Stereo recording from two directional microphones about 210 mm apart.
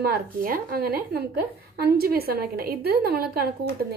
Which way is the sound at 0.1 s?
45° right (ahead or behind).